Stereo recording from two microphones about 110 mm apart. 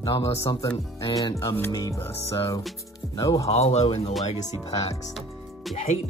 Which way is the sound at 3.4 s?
75° left (ahead or behind).